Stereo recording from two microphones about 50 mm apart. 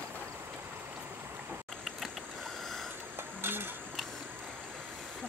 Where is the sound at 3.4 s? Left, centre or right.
Right.